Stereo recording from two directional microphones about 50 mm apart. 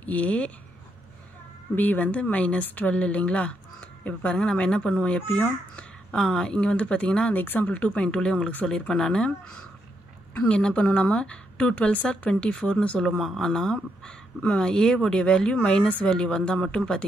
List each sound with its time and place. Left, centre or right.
0.0 s speech: left
1.8 s speech: left
7.3 s speech: left
13.4 s speech: centre